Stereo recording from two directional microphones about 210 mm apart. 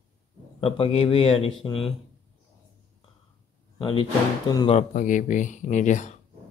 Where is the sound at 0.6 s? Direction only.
25° left (ahead or behind).